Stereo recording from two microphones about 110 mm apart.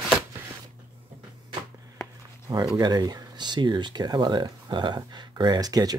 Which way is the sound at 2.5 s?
40° right (ahead or behind).